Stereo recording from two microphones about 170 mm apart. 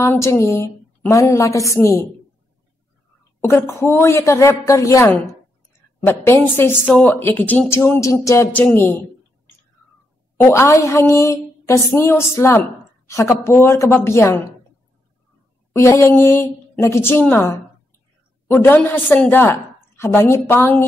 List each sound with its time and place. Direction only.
0.0 s speech: 15° left (ahead or behind)
3.3 s speech: 15° left (ahead or behind)
10.4 s speech: 15° left (ahead or behind)
15.7 s speech: 15° left (ahead or behind)